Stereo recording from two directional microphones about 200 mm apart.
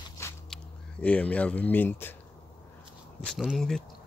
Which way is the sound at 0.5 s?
Centre (ahead or behind).